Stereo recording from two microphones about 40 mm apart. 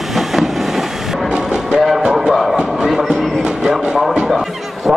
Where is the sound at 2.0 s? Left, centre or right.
Centre.